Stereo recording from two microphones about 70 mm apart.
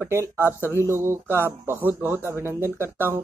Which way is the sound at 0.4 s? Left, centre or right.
Left.